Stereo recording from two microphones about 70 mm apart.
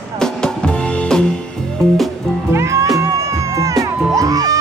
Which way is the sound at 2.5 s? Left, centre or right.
Right.